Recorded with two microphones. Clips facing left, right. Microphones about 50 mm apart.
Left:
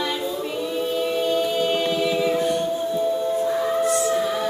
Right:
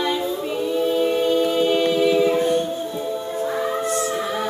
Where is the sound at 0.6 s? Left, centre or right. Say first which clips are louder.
Right 5 dB; centre.